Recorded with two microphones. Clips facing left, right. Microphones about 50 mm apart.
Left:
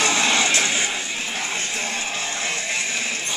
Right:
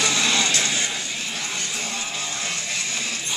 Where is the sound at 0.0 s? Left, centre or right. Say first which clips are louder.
Left 2 dB; left.